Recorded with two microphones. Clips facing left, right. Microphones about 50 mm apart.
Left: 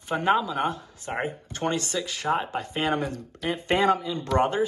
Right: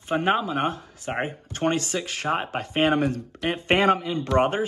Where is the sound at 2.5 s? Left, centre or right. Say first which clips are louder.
Right 4 dB; right.